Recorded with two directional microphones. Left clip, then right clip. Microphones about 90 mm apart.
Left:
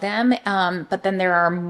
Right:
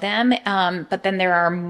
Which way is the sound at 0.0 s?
5° left (ahead or behind).